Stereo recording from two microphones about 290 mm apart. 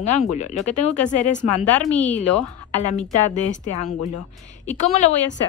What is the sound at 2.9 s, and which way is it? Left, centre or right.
Speech, left.